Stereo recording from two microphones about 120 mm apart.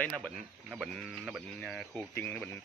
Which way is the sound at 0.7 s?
5° right (ahead or behind).